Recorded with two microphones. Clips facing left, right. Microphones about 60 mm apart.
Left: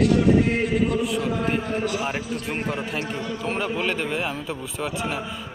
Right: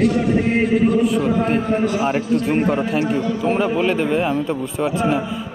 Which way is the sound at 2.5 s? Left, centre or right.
Centre.